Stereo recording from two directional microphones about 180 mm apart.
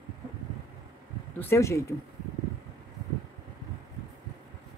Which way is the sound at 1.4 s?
15° left (ahead or behind).